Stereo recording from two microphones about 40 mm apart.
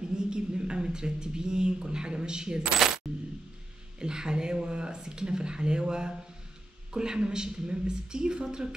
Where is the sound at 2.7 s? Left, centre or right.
Centre.